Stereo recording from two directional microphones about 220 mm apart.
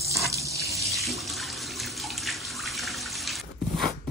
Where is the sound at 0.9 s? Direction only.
Centre (ahead or behind).